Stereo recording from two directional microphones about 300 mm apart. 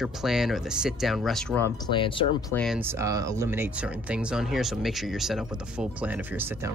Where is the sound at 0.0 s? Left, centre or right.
Centre.